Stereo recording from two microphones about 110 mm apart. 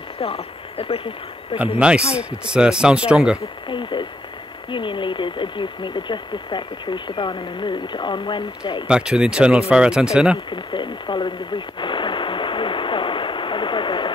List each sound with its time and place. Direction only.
0.2 s speech: 60° left (ahead or behind)
1.6 s speech: 10° right (ahead or behind)
3.6 s speech: 45° left (ahead or behind)
8.8 s speech: 10° right (ahead or behind)
10.5 s a sound: 45° left (ahead or behind)